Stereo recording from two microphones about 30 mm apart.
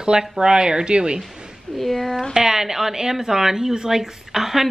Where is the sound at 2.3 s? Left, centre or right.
Centre.